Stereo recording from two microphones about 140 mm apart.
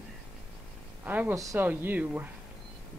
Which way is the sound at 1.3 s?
25° right (ahead or behind).